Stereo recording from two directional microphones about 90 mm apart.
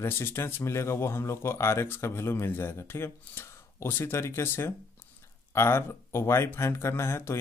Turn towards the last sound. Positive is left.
turn(degrees=30)  # may be behind; listen again after turning